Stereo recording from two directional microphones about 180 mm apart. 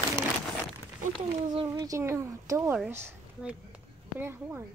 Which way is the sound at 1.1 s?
30° right (ahead or behind).